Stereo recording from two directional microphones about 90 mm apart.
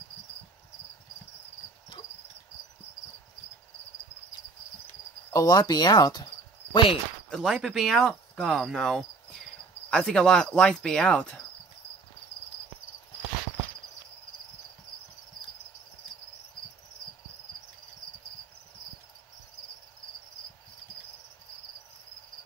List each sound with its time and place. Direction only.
5.3 s speech: 45° left (ahead or behind); by 7.0 s 65° left (ahead or behind)
7.2 s speech: centre (ahead or behind)
9.8 s cricket: 10° left (ahead or behind)